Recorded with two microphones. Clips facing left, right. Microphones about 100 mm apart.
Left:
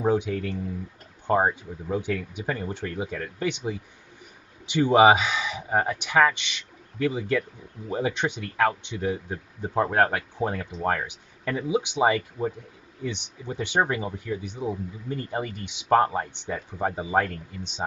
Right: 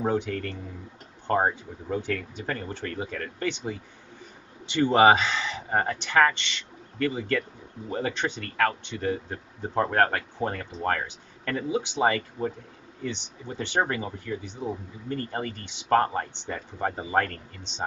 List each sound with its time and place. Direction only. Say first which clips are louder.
0.0 s speech: left 3 dB; 15° left (ahead or behind)